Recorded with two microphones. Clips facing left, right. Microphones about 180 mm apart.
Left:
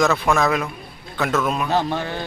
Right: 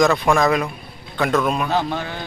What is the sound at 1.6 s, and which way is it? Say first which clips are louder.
Speech: left 1 dB; 15° left (ahead or behind).